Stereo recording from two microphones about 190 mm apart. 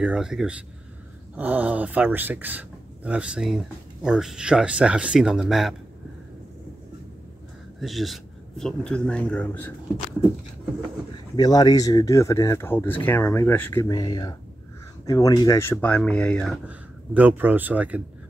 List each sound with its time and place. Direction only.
0.0 s speech: 5° right (ahead or behind)
7.8 s speech: centre (ahead or behind)
11.3 s speech: 20° left (ahead or behind); by 16.5 s 5° left (ahead or behind)
16.6 s speech: 10° right (ahead or behind)